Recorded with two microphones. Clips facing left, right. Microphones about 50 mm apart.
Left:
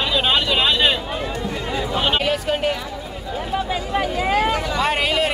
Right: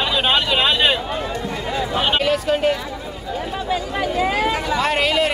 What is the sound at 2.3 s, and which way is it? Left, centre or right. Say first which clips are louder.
Speech: right 2 dB; centre.